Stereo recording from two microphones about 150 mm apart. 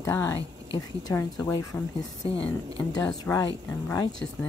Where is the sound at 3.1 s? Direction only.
25° left (ahead or behind).